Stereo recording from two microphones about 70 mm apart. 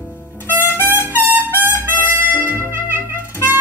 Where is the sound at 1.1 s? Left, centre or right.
Right.